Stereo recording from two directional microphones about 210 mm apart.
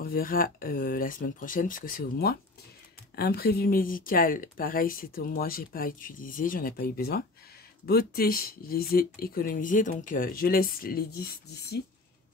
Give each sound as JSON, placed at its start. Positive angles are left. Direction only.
{"t": 0.0, "sound": "speech", "side_deg": 45}